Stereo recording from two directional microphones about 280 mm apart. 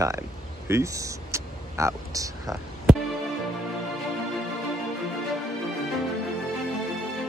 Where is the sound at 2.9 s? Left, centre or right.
Centre.